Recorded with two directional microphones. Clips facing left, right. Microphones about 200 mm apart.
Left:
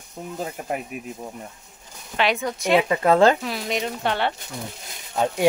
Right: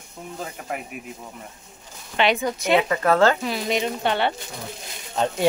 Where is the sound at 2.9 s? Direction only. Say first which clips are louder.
Left 4 dB; 20° left (ahead or behind).